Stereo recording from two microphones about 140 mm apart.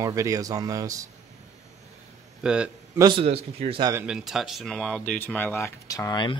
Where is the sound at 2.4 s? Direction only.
5° right (ahead or behind).